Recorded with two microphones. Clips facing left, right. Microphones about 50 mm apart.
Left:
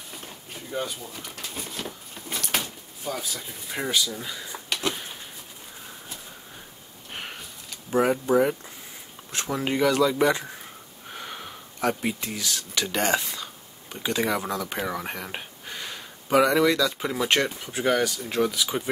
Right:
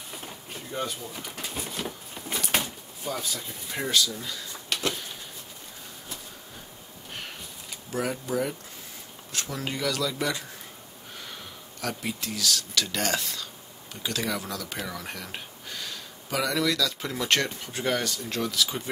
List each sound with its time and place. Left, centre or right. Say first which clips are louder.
0.5 s speech: left 1 dB; centre
4.8 s a sound: left 1 dB; centre
7.9 s speech: left 8 dB; left